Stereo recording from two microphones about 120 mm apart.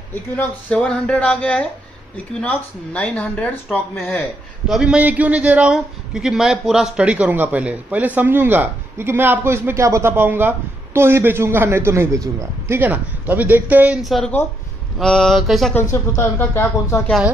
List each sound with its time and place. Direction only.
0.1 s speech: 15° left (ahead or behind)
4.6 s a man's voice: 5° right (ahead or behind)
14.0 s a sound: centre (ahead or behind)
15.7 s speech: 25° left (ahead or behind)